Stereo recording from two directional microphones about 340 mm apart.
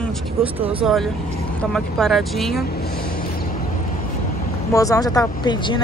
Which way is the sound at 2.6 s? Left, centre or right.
Left.